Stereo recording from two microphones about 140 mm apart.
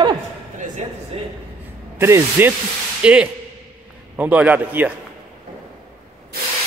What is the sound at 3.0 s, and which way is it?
A man's voice, 10° right (ahead or behind).